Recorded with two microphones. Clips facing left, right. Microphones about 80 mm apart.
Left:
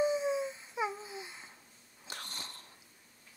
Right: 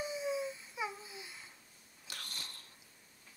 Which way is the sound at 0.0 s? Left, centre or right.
Left.